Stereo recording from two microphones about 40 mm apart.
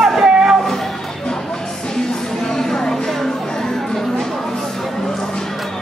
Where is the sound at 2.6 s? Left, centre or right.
Centre.